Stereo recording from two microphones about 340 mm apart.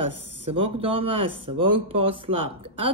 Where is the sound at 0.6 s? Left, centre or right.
Centre.